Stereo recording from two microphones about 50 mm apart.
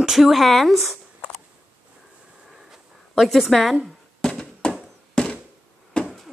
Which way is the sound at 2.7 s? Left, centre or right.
Centre.